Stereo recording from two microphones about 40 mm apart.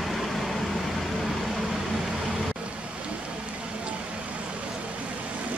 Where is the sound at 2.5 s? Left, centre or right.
Right.